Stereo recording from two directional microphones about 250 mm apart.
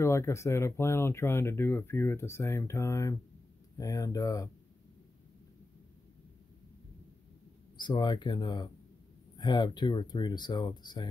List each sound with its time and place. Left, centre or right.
0.0 s speech: centre
7.7 s speech: centre